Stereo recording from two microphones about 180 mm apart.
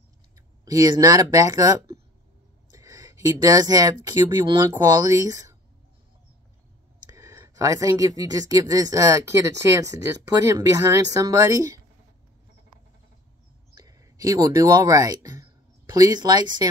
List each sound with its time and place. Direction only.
0.7 s speech: 20° right (ahead or behind)
7.1 s speech: 15° right (ahead or behind)
13.7 s speech: 20° right (ahead or behind)